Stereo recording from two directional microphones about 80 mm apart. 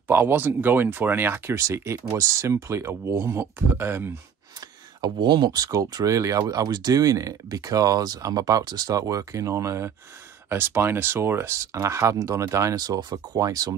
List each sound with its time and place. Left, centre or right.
0.1 s speech: right
4.6 s speech: right
12.8 s speech: right